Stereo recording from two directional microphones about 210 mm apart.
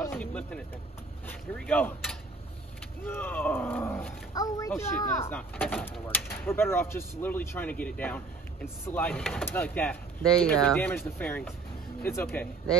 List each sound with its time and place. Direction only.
0.0 s speech: 10° left (ahead or behind)